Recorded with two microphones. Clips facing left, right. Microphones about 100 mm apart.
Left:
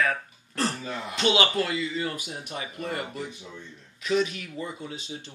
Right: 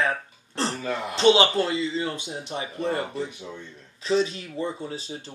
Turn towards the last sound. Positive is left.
turn(degrees=-35)  # may be behind; listen again after turning